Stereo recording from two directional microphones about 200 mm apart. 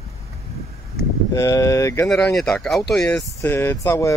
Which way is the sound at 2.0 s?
5° left (ahead or behind).